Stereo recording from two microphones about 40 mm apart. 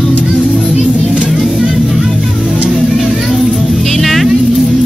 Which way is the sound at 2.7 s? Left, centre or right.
Centre.